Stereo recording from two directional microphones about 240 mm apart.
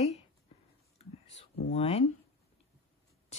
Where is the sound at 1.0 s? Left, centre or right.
Left.